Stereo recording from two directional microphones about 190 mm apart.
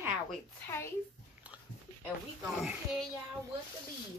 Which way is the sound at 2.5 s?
5° right (ahead or behind).